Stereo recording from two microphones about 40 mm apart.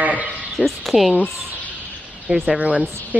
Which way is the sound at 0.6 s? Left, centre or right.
Centre.